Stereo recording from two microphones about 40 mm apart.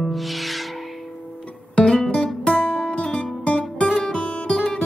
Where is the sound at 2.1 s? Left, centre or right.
Left.